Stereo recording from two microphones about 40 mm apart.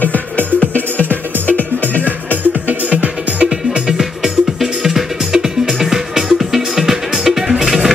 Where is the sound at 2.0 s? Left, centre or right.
Right.